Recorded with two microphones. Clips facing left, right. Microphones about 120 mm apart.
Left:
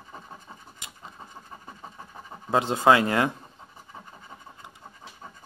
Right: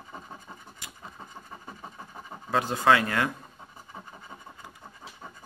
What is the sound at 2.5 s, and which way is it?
Speech, 25° left (ahead or behind).